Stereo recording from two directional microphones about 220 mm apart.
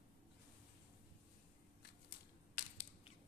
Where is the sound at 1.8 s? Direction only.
45° left (ahead or behind).